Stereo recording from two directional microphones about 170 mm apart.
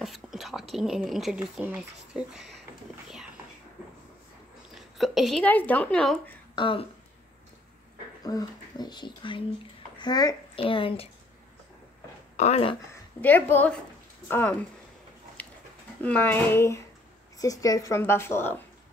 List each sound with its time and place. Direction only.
0.0 s speech: centre (ahead or behind)
4.7 s speech: centre (ahead or behind)
6.5 s speech: 30° left (ahead or behind)
8.2 s a child's voice: 20° left (ahead or behind)
12.4 s speech: 40° left (ahead or behind)
13.2 s a woman's voice: 10° left (ahead or behind)
15.4 s a sound: 10° left (ahead or behind)
16.0 s a woman's voice: 10° left (ahead or behind)